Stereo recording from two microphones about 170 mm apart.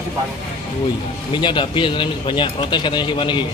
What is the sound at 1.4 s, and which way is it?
Speech, 30° left (ahead or behind).